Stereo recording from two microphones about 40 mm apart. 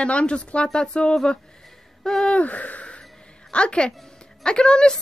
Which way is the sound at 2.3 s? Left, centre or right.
Left.